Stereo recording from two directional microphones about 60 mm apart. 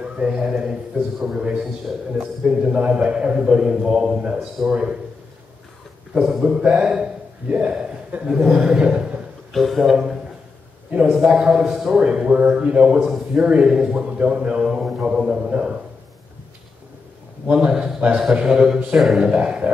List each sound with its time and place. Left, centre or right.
0.0 s a man's voice: centre
6.1 s speech: centre
6.4 s a man's voice: centre
7.4 s a man's voice: centre
9.5 s speech: centre
11.2 s a man's voice: centre
17.5 s a man's voice: centre
18.9 s speech: centre
19.2 s a man's voice: centre